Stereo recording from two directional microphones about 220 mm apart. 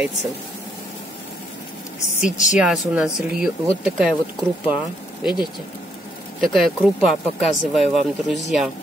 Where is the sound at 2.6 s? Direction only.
5° right (ahead or behind).